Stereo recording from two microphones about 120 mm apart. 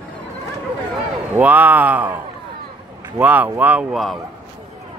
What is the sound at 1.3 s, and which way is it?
Speech, 15° right (ahead or behind).